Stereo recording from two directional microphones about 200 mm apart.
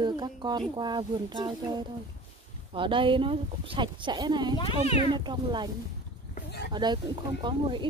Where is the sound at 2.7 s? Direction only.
25° right (ahead or behind).